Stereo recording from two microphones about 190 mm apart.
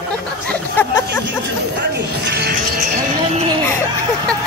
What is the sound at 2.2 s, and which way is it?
Music, 55° right (ahead or behind).